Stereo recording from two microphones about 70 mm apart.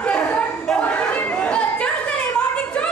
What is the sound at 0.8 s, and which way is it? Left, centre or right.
Chatter, centre.